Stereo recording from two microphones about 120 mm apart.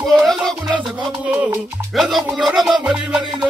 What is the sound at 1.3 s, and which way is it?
Music, 10° right (ahead or behind).